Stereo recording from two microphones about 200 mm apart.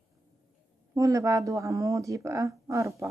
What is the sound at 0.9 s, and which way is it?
Speech, 15° right (ahead or behind).